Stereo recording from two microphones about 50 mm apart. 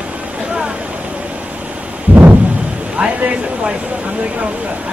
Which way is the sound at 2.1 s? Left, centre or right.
Right.